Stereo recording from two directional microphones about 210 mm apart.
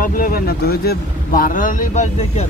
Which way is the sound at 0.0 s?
45° left (ahead or behind).